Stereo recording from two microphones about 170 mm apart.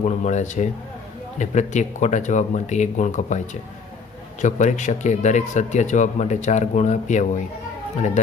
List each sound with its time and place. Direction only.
0.0 s speech: 45° left (ahead or behind)